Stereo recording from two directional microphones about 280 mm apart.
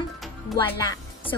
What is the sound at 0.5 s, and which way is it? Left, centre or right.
Speech, centre.